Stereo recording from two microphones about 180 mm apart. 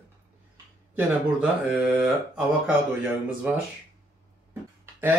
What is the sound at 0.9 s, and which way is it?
Speech, 10° right (ahead or behind).